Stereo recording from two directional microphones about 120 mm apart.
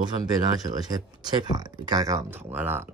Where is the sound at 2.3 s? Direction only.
15° right (ahead or behind).